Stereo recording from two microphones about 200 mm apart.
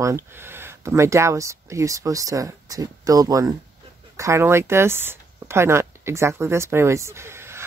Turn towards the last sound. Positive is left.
turn(degrees=-15)  # may be behind; listen again after turning